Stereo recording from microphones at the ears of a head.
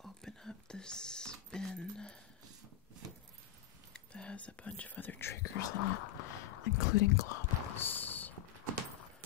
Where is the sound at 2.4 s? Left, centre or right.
Right.